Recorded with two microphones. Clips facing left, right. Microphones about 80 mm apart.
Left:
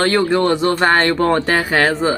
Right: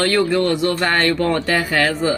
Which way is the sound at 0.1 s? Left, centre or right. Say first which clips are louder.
Left 2 dB; left.